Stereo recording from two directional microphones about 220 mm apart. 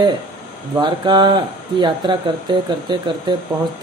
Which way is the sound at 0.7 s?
20° right (ahead or behind).